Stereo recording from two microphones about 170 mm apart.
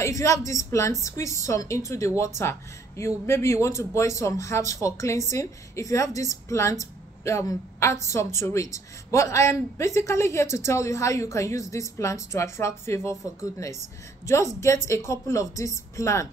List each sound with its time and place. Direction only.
0.0 s a woman's voice: 20° left (ahead or behind)